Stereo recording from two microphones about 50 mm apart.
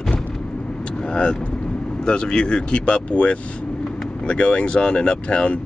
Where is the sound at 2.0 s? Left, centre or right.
Centre.